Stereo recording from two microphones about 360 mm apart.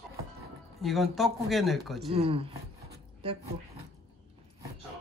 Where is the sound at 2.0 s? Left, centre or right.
Centre.